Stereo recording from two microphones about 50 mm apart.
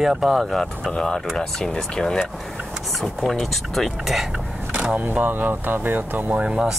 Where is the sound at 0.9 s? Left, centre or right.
Centre.